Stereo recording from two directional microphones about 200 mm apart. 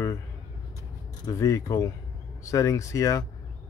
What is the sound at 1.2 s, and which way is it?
Speech, 15° left (ahead or behind).